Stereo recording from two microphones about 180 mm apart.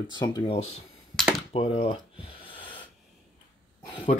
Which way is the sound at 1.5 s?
30° left (ahead or behind).